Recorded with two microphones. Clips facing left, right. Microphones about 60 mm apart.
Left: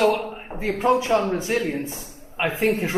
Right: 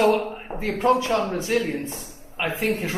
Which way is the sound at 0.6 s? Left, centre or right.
Centre.